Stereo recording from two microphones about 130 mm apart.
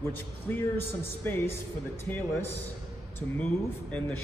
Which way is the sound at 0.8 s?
15° left (ahead or behind).